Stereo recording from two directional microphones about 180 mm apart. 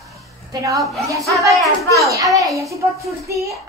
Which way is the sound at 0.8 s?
Centre (ahead or behind).